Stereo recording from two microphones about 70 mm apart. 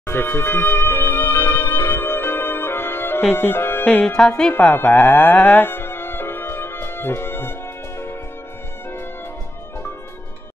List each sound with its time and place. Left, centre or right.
0.0 s music: left
3.3 s speech: left
3.8 s music: centre
4.3 s music: left